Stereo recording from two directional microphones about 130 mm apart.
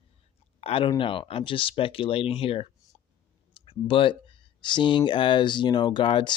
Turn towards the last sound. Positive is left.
turn(degrees=40)  # may be behind; listen again after turning